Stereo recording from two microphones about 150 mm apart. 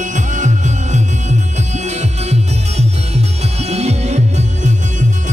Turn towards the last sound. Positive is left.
turn(degrees=-50)  # may be behind; listen again after turning